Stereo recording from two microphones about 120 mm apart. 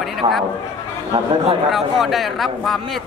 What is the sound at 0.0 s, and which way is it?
Speech, centre (ahead or behind).